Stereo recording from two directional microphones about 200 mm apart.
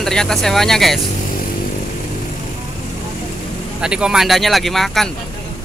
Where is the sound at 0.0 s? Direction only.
Centre (ahead or behind).